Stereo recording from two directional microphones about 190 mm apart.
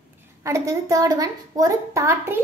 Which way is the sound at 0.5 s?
15° right (ahead or behind).